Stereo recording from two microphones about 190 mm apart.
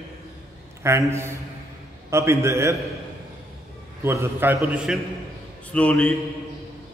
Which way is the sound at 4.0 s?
15° right (ahead or behind).